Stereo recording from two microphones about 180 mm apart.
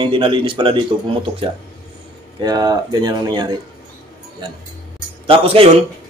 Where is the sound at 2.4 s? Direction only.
20° right (ahead or behind).